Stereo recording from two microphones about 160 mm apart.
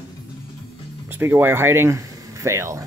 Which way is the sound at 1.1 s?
15° right (ahead or behind).